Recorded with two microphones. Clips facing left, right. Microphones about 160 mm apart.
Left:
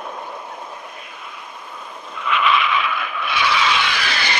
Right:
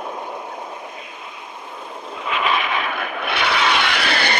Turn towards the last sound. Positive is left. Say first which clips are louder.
# right 3 dB
turn(degrees=-60)  # may be behind; listen again after turning